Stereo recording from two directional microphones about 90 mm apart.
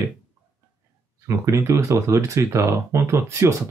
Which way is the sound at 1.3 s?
35° right (ahead or behind).